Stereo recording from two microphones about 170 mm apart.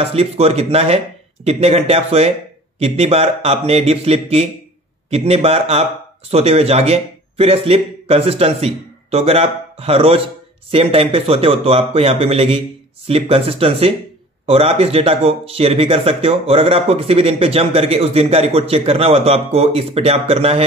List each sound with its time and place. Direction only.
0.0 s speech: 35° right (ahead or behind)